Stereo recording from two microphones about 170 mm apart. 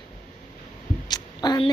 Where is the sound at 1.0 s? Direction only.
25° left (ahead or behind).